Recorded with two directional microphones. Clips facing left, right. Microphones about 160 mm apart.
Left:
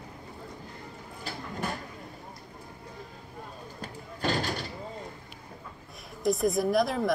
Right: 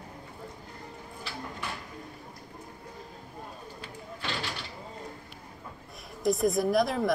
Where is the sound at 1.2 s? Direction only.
45° left (ahead or behind).